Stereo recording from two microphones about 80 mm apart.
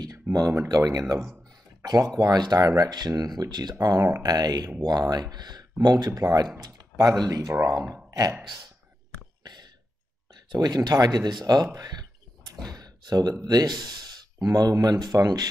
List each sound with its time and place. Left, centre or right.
0.0 s a sound: right
0.7 s speech: right
9.4 s throat clearing: right
10.5 s speech: right
11.4 s a sound: right
12.7 s speech: right